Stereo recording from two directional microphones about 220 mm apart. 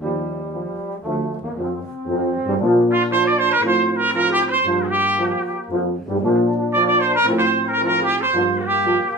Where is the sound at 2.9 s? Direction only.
10° right (ahead or behind).